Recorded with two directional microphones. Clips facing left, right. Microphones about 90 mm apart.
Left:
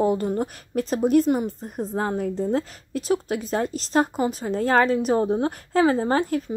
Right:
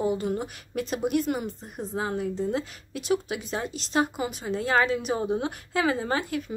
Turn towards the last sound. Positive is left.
turn(degrees=40)  # may be behind; listen again after turning